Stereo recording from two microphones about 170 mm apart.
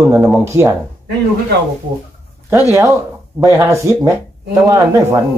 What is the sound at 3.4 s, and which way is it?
A man's voice, 20° right (ahead or behind).